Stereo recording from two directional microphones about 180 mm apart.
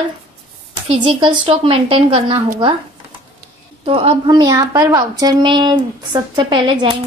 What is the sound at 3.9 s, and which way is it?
A woman's voice, 30° right (ahead or behind).